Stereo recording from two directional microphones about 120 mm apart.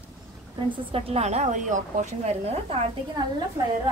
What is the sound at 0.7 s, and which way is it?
A woman's voice, 55° right (ahead or behind).